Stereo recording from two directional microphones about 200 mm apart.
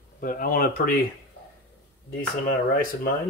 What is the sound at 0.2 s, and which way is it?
Speech, 45° left (ahead or behind).